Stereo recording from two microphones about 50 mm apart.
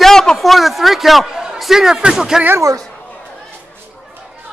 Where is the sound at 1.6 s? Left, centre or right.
Centre.